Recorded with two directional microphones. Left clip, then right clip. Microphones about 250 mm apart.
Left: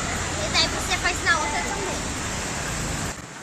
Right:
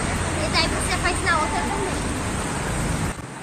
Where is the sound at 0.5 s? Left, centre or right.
Centre.